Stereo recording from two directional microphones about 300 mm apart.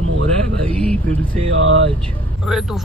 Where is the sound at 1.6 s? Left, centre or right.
Right.